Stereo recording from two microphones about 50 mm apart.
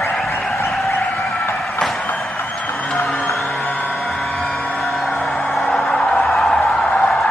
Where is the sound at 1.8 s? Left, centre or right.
Centre.